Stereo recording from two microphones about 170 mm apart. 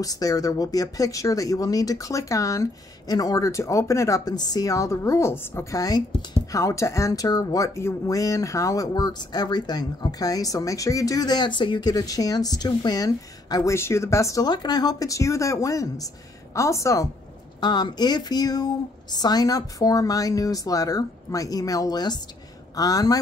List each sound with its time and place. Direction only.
0.0 s a woman's voice: 20° left (ahead or behind)